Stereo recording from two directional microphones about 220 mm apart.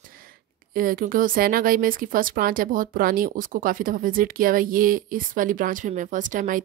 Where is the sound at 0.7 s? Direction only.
40° right (ahead or behind).